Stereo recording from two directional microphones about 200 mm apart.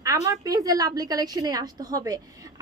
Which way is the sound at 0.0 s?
15° right (ahead or behind).